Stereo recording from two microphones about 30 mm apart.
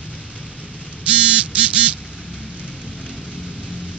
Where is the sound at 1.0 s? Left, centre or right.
Right.